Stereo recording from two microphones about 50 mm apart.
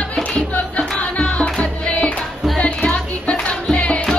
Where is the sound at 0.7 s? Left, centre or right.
Left.